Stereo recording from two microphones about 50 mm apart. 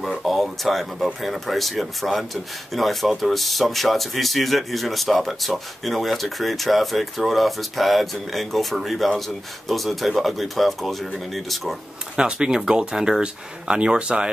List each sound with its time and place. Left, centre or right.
0.2 s speech: centre
12.2 s speech: centre